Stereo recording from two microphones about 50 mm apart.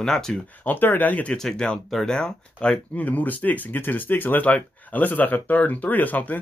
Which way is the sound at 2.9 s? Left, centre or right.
Left.